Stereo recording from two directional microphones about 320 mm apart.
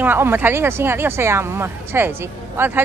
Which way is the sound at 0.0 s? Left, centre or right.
Centre.